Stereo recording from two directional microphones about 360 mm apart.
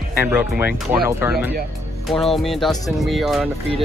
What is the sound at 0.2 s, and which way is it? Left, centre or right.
Speech, centre.